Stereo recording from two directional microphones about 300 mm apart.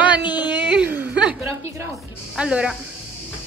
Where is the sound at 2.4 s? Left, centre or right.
Centre.